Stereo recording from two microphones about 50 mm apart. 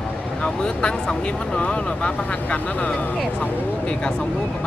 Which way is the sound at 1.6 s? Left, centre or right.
Left.